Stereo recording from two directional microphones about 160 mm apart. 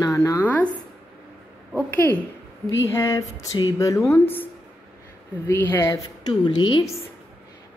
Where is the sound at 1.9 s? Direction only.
10° left (ahead or behind); by 6.8 s 30° left (ahead or behind).